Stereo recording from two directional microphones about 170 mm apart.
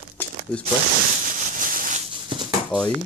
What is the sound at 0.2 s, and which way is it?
Crumpling, 10° left (ahead or behind).